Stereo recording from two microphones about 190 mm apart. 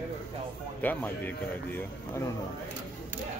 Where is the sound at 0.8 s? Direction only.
10° left (ahead or behind).